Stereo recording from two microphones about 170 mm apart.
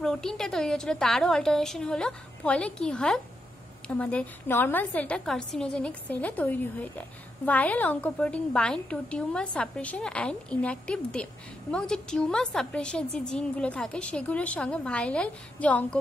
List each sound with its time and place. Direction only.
0.0 s a woman's voice: 5° left (ahead or behind)